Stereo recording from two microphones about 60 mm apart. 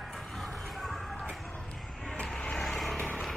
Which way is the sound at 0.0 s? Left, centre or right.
Centre.